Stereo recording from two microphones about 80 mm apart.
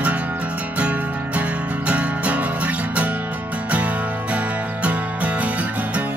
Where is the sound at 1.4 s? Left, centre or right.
Centre.